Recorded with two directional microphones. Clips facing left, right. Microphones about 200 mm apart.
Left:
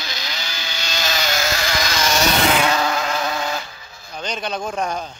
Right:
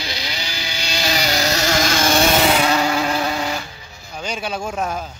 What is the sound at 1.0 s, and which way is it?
Vehicle, 35° right (ahead or behind).